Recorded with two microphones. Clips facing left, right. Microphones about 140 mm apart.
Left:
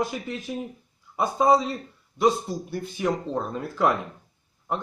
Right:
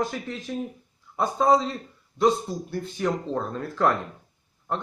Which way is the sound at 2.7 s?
10° left (ahead or behind).